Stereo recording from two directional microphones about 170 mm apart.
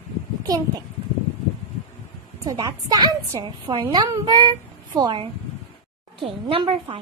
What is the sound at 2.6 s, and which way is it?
A woman's voice, 20° right (ahead or behind).